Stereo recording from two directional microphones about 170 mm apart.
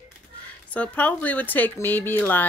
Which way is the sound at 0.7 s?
10° left (ahead or behind).